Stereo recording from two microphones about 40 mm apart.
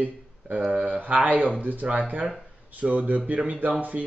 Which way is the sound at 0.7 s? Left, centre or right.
Right.